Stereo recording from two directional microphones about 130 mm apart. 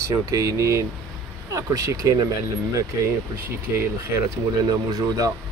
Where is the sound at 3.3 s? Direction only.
20° right (ahead or behind).